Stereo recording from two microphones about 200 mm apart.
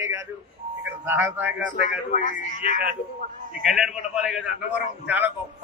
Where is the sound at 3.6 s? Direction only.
5° right (ahead or behind).